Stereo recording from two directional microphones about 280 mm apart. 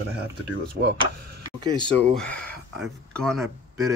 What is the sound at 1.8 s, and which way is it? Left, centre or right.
Speech, centre.